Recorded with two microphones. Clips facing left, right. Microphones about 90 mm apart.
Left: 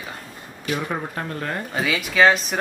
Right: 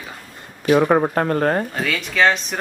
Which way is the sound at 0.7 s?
60° right (ahead or behind).